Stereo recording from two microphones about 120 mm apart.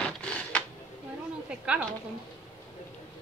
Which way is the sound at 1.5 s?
10° right (ahead or behind).